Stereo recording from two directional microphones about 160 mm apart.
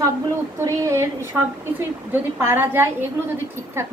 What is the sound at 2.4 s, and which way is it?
Speech, 15° right (ahead or behind).